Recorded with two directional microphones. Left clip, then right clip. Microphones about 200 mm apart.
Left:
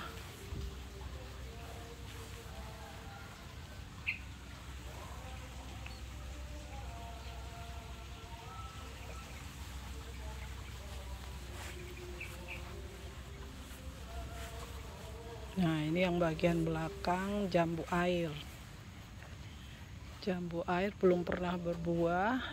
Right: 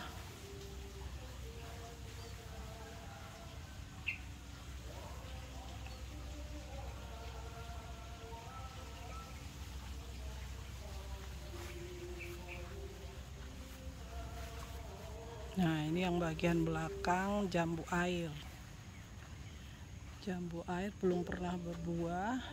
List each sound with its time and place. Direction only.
4.1 s a sound: 50° right (ahead or behind)
15.6 s speech: 5° right (ahead or behind)
20.2 s speech: centre (ahead or behind)